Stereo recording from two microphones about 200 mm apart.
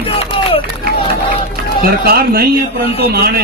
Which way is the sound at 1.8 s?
50° right (ahead or behind).